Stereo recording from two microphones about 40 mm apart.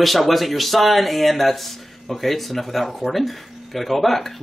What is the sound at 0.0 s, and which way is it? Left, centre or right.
Speech, centre.